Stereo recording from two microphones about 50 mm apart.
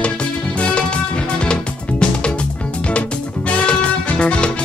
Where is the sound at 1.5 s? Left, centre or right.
Left.